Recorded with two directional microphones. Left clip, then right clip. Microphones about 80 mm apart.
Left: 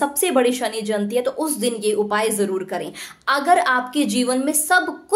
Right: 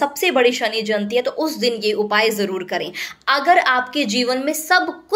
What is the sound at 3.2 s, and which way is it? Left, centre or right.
A woman's voice, left.